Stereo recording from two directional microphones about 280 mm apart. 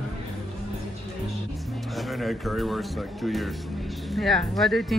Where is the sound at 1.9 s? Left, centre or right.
Centre.